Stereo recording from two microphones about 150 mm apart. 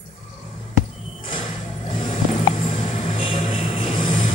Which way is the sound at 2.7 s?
35° left (ahead or behind).